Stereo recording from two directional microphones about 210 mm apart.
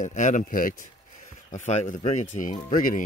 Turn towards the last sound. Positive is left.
turn(degrees=40)  # may be behind; listen again after turning